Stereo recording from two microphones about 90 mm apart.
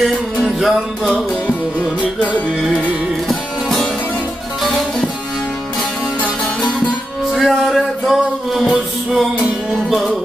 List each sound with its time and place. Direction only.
0.0 s music: 5° right (ahead or behind)
3.3 s music: centre (ahead or behind)
7.3 s music: centre (ahead or behind)